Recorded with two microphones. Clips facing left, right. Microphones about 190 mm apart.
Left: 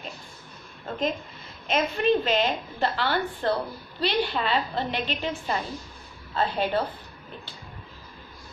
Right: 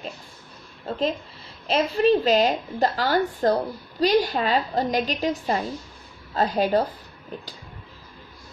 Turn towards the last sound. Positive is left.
turn(degrees=-40)  # may be behind; listen again after turning